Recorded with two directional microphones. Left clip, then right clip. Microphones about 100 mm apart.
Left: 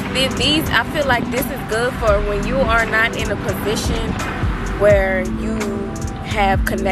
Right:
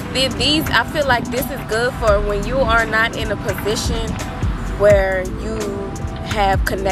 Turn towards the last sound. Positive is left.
turn(degrees=-5)  # may be behind; listen again after turning